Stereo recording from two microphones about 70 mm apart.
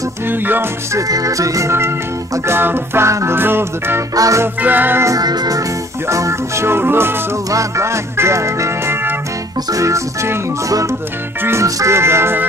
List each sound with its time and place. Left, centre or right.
0.3 s music: right
0.9 s music: right
4.1 s music: right
4.6 s music: right
5.0 s music: right
6.0 s music: right
7.5 s music: right
9.7 s music: right